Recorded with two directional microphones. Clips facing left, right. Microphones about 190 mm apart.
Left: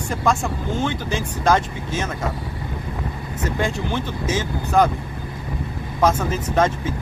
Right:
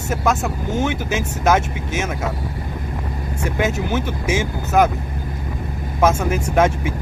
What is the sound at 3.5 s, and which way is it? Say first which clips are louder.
Speech: right 3 dB; 10° right (ahead or behind).